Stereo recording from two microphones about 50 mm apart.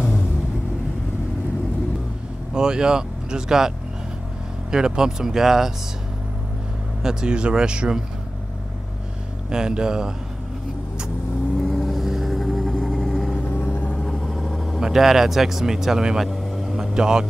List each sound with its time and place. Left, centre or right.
2.5 s speech: centre
7.0 s speech: centre
9.5 s speech: centre
11.5 s vehicle: centre
13.5 s vehicle: left
14.0 s vehicle: centre
14.8 s speech: centre
16.2 s vehicle: centre
16.7 s speech: centre